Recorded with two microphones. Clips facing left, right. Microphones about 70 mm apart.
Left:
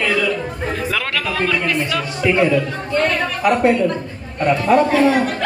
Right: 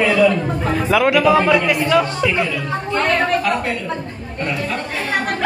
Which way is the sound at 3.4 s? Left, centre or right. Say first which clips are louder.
Left 5 dB; left.